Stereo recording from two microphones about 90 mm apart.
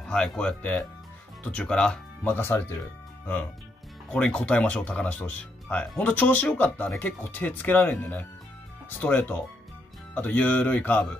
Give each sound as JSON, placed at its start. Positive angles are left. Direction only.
{"t": 0.1, "sound": "speech", "side_deg": 10}
{"t": 2.3, "sound": "speech", "side_deg": 25}
{"t": 4.1, "sound": "speech", "side_deg": 15}